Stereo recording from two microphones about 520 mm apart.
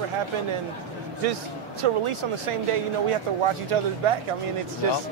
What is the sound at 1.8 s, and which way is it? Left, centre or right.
Speech, right.